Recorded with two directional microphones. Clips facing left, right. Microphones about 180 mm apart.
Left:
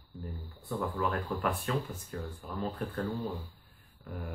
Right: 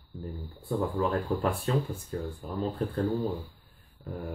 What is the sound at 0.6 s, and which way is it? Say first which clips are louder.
Speech: right 4 dB; 30° right (ahead or behind).